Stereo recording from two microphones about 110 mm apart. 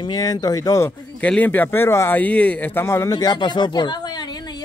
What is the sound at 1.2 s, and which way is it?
Speech, 15° left (ahead or behind).